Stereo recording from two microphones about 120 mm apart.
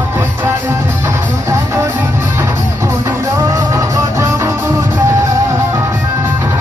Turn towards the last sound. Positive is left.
turn(degrees=-20)  # may be behind; listen again after turning